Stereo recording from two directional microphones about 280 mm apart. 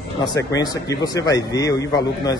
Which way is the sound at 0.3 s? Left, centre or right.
Centre.